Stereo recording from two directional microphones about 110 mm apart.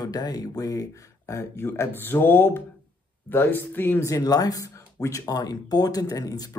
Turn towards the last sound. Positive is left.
turn(degrees=35)  # may be behind; listen again after turning